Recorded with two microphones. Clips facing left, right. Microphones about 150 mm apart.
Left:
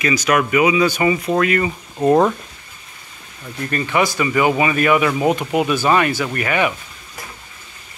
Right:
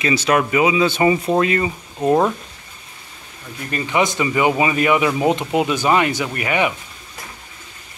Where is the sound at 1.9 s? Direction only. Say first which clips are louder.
Left 2 dB; centre (ahead or behind).